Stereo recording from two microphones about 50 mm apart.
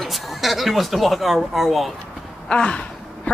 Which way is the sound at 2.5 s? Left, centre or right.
Left.